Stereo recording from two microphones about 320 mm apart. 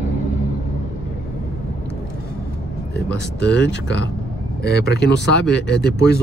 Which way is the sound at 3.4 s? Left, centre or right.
Left.